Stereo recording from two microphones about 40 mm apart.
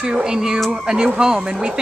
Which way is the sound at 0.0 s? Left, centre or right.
Centre.